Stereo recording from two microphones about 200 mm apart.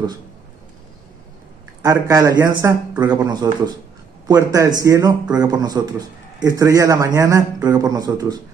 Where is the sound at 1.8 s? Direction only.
20° right (ahead or behind).